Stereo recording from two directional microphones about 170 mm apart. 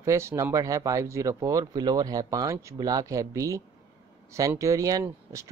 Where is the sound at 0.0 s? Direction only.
15° right (ahead or behind).